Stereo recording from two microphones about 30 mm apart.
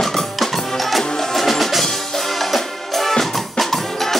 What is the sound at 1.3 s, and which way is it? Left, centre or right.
Music, centre.